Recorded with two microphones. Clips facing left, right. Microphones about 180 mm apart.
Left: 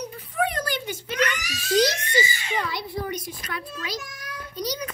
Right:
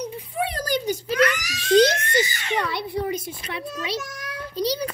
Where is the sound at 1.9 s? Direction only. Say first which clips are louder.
Right 4 dB; 55° right (ahead or behind).